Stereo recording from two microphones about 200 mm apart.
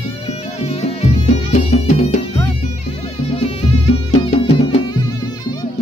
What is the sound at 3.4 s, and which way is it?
Music, 30° left (ahead or behind).